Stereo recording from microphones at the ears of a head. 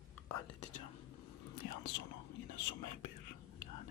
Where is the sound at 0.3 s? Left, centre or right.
Left.